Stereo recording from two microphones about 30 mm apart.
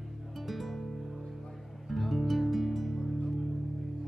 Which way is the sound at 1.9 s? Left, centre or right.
Centre.